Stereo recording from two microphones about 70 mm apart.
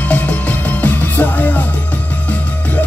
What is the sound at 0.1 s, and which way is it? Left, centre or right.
Music, left.